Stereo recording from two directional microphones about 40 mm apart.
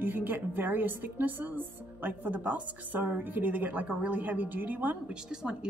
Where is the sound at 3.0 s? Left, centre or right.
Right.